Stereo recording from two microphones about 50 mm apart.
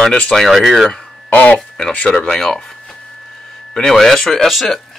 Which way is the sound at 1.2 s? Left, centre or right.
Left.